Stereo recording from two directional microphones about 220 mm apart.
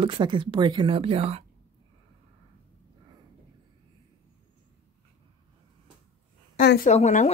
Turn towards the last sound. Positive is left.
turn(degrees=30)  # may be behind; listen again after turning